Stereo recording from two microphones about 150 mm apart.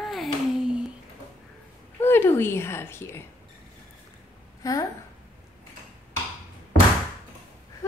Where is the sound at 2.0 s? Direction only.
15° left (ahead or behind).